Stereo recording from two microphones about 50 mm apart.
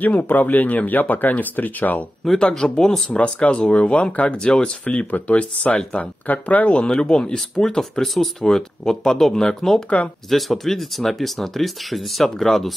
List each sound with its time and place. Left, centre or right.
0.0 s speech: left
2.6 s speech: centre
3.1 s speech: left; by 12.7 s centre